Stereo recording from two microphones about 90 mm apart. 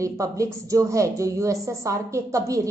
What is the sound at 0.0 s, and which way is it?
Speech, 35° right (ahead or behind).